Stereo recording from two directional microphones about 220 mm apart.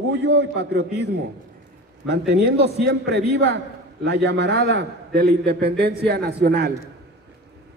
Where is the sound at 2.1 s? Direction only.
50° right (ahead or behind).